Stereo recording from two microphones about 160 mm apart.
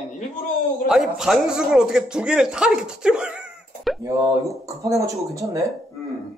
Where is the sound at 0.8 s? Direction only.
5° right (ahead or behind).